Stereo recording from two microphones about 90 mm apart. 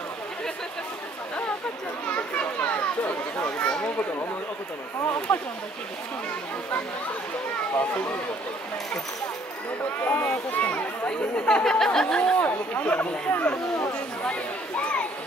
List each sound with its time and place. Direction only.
2.0 s children playing: 15° left (ahead or behind)
5.3 s speech: 15° left (ahead or behind)
10.0 s speech: 15° left (ahead or behind)
12.4 s speech: 20° left (ahead or behind)
14.8 s a sound: 15° left (ahead or behind)